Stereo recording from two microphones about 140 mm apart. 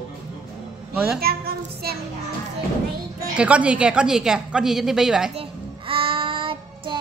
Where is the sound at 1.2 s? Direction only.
90° right.